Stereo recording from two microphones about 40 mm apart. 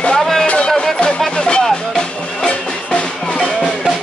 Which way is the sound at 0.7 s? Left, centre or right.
Centre.